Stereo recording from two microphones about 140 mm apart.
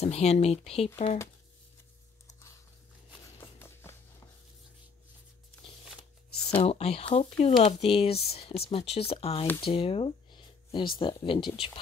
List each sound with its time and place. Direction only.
0.0 s speech: 50° left (ahead or behind)
3.3 s music: 15° left (ahead or behind)
6.6 s speech: 45° left (ahead or behind)
9.6 s a sound: 40° left (ahead or behind)
11.0 s speech: 35° left (ahead or behind)